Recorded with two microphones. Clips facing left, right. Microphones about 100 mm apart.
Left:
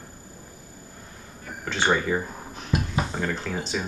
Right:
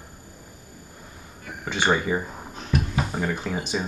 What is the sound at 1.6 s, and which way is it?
Speech, 15° right (ahead or behind).